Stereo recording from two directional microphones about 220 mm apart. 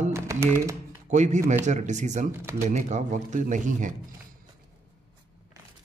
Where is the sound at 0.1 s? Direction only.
10° right (ahead or behind).